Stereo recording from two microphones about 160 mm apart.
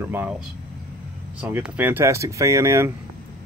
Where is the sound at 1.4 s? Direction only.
10° right (ahead or behind).